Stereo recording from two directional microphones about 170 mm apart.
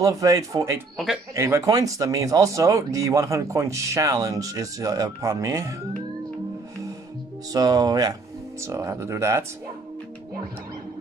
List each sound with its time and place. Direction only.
0.0 s speech: 20° right (ahead or behind)
0.9 s speech: centre (ahead or behind)
1.3 s speech: 15° right (ahead or behind)
7.5 s speech: 25° right (ahead or behind)